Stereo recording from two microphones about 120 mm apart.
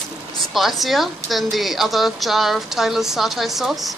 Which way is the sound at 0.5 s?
Centre (ahead or behind).